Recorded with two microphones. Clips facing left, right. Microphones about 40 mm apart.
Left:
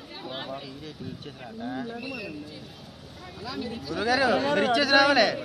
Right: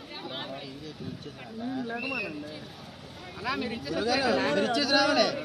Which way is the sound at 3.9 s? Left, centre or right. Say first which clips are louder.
Left 3 dB; left.